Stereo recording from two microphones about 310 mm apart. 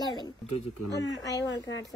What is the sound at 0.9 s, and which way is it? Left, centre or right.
Speech, left.